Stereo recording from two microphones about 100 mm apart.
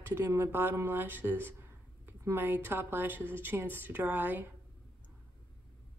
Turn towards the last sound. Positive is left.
turn(degrees=-20)  # may be behind; listen again after turning